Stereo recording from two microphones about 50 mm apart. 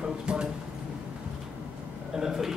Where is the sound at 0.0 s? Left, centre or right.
Centre.